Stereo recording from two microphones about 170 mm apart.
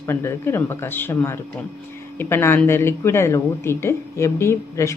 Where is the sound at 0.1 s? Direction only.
15° left (ahead or behind).